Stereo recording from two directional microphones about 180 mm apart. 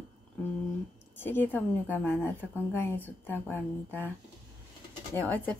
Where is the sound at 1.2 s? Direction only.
10° left (ahead or behind).